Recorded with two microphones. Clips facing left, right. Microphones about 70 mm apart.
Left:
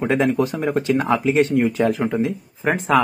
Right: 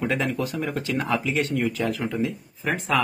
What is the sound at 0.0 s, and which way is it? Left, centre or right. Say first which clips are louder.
Speech: left 7 dB; left.